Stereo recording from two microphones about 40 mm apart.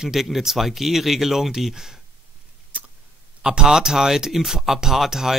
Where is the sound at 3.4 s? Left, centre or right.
Centre.